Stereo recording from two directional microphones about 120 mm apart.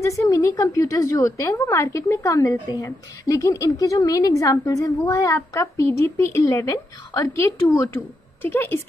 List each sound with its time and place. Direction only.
0.0 s a woman's voice: 25° left (ahead or behind)